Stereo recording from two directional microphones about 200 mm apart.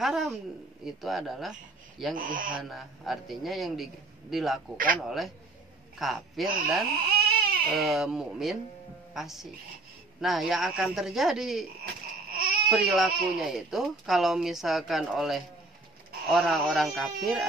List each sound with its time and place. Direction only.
0.0 s speech: centre (ahead or behind)
2.1 s speech: 45° right (ahead or behind)
2.7 s speech: centre (ahead or behind)
6.9 s baby cry: 50° right (ahead or behind)
7.7 s speech: centre (ahead or behind)
12.3 s baby cry: 50° right (ahead or behind)
12.6 s speech: centre (ahead or behind)